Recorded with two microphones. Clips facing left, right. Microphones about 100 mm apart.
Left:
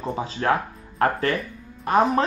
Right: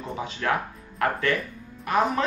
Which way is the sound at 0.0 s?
30° left (ahead or behind).